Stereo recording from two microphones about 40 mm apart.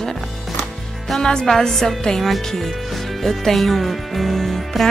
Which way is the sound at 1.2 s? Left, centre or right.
Centre.